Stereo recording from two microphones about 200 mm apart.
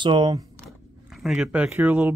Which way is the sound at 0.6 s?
Centre (ahead or behind).